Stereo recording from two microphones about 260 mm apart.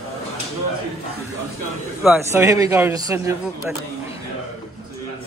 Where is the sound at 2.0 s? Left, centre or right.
Centre.